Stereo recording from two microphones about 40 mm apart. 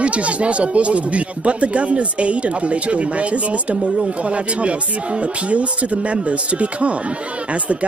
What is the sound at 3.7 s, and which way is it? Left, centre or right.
Speech, right.